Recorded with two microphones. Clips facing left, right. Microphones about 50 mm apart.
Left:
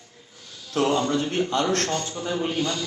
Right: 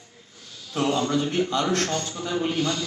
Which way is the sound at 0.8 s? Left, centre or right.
Centre.